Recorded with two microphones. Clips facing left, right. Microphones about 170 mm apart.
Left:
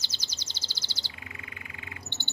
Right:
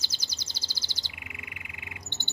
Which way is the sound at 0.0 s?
10° right (ahead or behind).